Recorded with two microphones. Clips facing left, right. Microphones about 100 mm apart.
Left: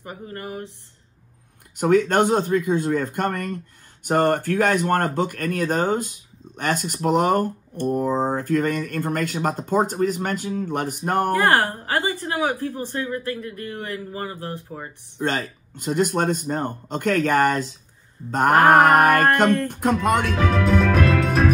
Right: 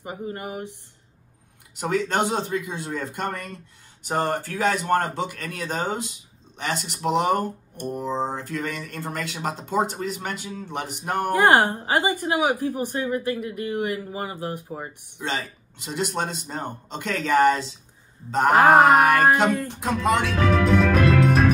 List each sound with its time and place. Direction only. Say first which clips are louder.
0.0 s a woman's voice: right 2 dB; 20° right (ahead or behind)
1.8 s speech: left 6 dB; 50° left (ahead or behind)
11.3 s a woman's voice: right 6 dB; 20° right (ahead or behind)
15.2 s speech: left 4 dB; 50° left (ahead or behind)
20.2 s music: even; centre (ahead or behind)